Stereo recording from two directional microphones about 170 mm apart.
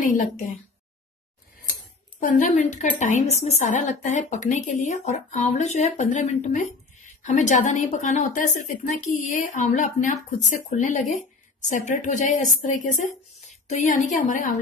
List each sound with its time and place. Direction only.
0.0 s speech: 50° left (ahead or behind)
2.1 s a woman's voice: 50° left (ahead or behind)